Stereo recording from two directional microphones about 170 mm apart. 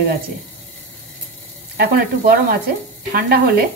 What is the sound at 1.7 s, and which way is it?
Speech, 65° right (ahead or behind).